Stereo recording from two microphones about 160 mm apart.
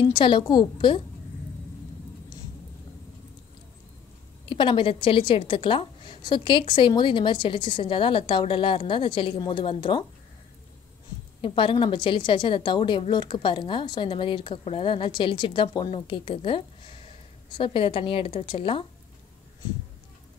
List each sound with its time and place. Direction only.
0.1 s a woman's voice: 30° left (ahead or behind)
4.5 s a woman's voice: 30° left (ahead or behind)
11.4 s a woman's voice: 30° left (ahead or behind)